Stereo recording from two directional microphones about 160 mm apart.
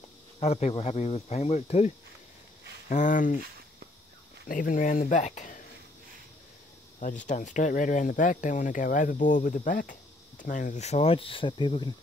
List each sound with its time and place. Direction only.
0.4 s speech: 40° left (ahead or behind)
2.9 s speech: 55° left (ahead or behind)
4.5 s speech: 60° left (ahead or behind)
7.0 s speech: 50° left (ahead or behind); by 11.9 s 30° left (ahead or behind)